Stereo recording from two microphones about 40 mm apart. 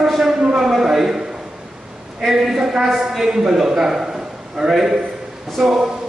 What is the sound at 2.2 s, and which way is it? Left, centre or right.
A man's voice, centre.